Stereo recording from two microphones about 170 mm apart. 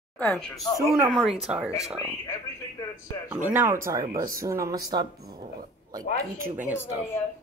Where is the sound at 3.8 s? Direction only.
20° right (ahead or behind).